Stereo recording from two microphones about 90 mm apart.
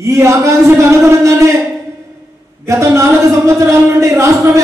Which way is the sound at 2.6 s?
35° right (ahead or behind).